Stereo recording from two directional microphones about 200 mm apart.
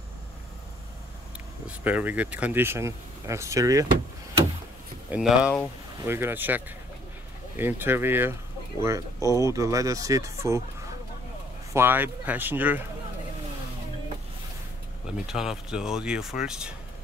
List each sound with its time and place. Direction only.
1.7 s speech: 5° right (ahead or behind)
5.1 s speech: 5° right (ahead or behind)
15.3 s speech: 5° right (ahead or behind)